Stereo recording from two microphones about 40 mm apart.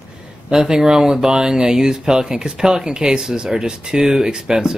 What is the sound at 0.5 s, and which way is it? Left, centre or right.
Speech, centre.